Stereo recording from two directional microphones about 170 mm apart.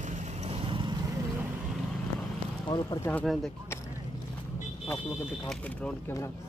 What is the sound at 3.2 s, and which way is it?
Speech, centre (ahead or behind).